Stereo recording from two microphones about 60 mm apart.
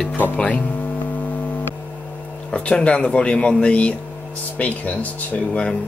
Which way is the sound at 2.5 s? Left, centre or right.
Left.